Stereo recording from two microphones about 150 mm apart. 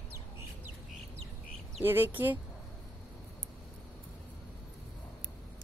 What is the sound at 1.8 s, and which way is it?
Speech, 15° right (ahead or behind).